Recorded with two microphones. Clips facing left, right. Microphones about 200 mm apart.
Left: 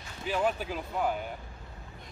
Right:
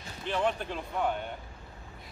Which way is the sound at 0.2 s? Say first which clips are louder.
Left 1 dB; 5° left (ahead or behind).